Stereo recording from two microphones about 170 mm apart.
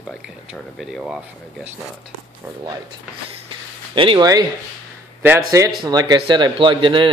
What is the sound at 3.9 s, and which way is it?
Speech, 30° right (ahead or behind).